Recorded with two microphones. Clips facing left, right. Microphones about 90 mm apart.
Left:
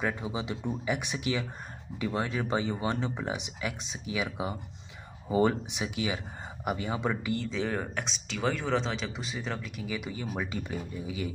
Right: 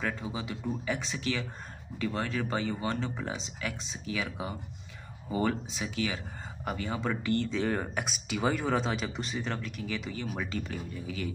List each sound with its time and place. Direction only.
0.0 s speech: 15° left (ahead or behind)